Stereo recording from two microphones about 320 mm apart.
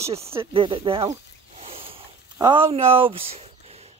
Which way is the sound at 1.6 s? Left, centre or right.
Centre.